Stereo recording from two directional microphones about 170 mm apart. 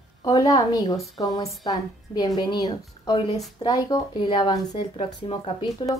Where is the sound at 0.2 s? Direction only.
20° left (ahead or behind).